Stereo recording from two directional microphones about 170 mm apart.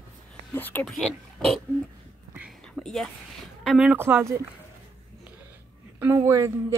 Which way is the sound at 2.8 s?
Centre (ahead or behind).